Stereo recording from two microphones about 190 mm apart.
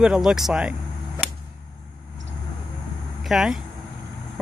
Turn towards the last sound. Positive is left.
turn(degrees=-5)  # may be behind; listen again after turning